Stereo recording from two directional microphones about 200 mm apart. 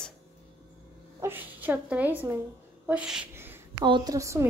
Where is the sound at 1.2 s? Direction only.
10° right (ahead or behind).